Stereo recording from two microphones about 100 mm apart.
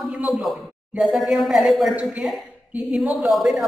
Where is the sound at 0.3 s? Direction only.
Centre (ahead or behind).